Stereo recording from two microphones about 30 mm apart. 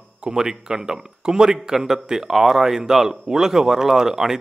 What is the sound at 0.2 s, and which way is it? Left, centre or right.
A man's voice, right.